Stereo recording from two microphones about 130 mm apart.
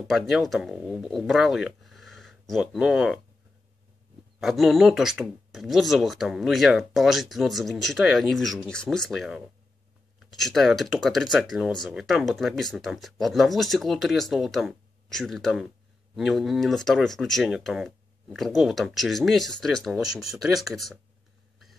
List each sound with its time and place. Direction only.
0.1 s speech: centre (ahead or behind)
4.4 s speech: centre (ahead or behind)